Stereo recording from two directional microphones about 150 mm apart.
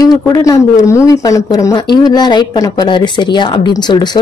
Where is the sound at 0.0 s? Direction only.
25° left (ahead or behind).